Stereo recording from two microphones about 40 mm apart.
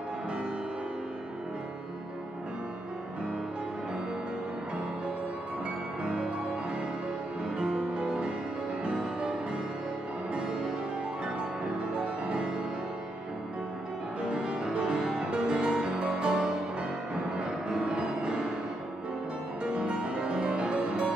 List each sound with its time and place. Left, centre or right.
6.0 s music: right
14.2 s music: right
19.6 s music: right